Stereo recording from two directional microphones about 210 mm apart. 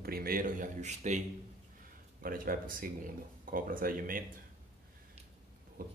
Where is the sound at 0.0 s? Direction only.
45° right (ahead or behind).